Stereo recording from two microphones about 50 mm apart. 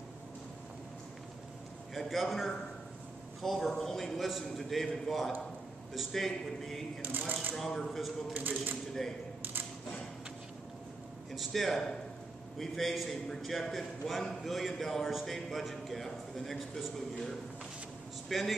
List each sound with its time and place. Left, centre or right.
2.0 s a man's voice: centre
7.0 s speech: right
7.5 s speech: centre
8.3 s speech: right
9.4 s a sound: right
11.3 s a man's voice: centre
18.3 s a man's voice: centre